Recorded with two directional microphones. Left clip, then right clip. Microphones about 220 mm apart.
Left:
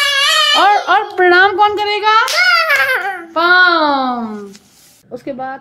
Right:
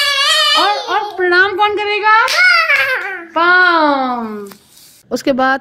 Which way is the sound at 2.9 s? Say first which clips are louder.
Left 2 dB; 45° left (ahead or behind).